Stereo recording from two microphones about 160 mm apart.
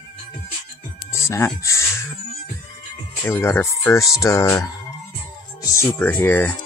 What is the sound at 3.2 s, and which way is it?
Speech, 15° left (ahead or behind).